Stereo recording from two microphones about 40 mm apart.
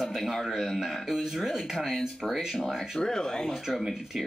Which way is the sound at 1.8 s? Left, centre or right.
Centre.